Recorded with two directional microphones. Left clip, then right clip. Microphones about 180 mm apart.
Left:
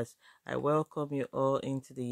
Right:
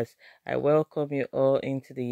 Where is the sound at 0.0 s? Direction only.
15° right (ahead or behind).